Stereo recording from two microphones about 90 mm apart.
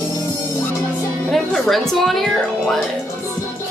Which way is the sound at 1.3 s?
5° left (ahead or behind).